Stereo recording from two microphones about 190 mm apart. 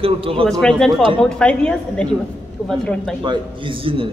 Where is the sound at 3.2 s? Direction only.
25° right (ahead or behind).